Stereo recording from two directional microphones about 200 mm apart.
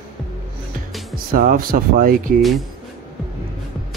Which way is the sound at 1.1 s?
45° right (ahead or behind).